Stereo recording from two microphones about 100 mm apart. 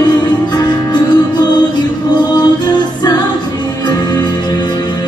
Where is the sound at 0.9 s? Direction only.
45° left (ahead or behind).